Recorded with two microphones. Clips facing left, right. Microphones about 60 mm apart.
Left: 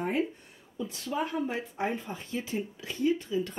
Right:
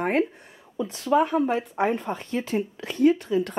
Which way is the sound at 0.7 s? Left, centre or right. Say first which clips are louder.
Right 11 dB; right.